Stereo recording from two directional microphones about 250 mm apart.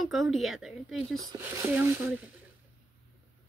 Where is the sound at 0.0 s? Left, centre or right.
Centre.